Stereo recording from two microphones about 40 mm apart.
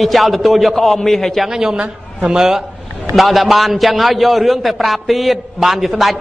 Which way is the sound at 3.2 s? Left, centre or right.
Centre.